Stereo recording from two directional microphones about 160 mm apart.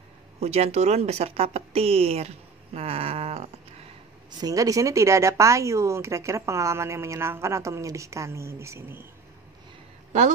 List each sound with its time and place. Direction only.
0.4 s speech: 40° right (ahead or behind)
4.4 s a woman's voice: 20° right (ahead or behind)